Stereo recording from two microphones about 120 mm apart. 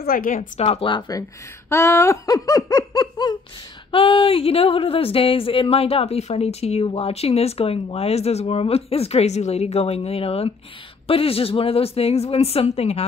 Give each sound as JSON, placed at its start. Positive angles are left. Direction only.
{"t": 0.3, "sound": "speech", "side_deg": 60}
{"t": 1.7, "sound": "laughter", "side_deg": 20}
{"t": 3.9, "sound": "speech", "side_deg": 50}